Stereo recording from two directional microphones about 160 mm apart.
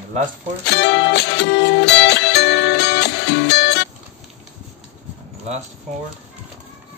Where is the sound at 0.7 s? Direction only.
90° left.